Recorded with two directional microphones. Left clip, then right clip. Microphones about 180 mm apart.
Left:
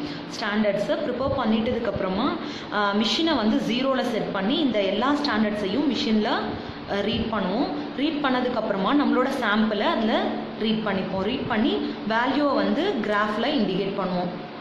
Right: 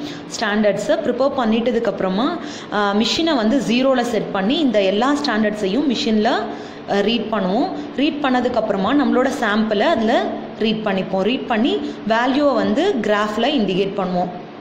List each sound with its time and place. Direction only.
0.4 s a woman's voice: 30° right (ahead or behind)
2.7 s a woman's voice: 30° right (ahead or behind)